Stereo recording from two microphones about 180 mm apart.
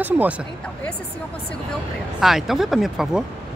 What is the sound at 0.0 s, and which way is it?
Speech, 10° right (ahead or behind).